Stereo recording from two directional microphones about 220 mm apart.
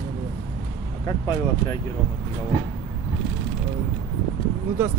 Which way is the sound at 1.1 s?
15° left (ahead or behind).